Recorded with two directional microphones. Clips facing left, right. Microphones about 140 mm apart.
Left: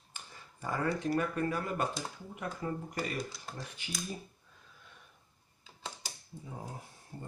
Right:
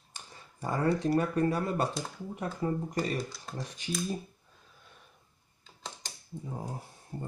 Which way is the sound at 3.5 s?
Centre (ahead or behind).